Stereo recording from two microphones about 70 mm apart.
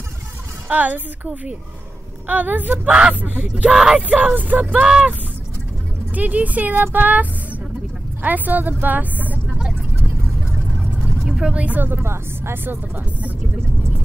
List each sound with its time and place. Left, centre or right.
0.7 s speech: right
3.7 s speech: centre
4.2 s speech: right
6.1 s speech: right
11.2 s speech: centre
11.9 s a woman's voice: right